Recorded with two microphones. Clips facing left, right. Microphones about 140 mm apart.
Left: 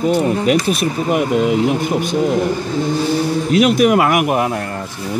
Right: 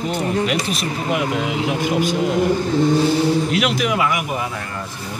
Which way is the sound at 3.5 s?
50° left (ahead or behind).